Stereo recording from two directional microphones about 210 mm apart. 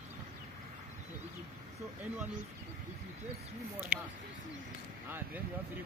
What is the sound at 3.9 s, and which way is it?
Speech, 10° right (ahead or behind).